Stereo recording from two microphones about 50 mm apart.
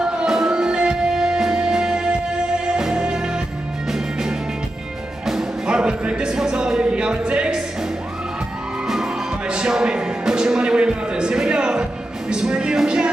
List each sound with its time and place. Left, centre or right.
0.0 s music: centre
9.5 s music: centre